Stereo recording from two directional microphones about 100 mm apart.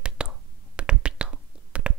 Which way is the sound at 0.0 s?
10° right (ahead or behind).